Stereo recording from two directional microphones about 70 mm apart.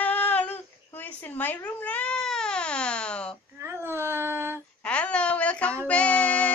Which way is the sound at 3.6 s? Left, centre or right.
Right.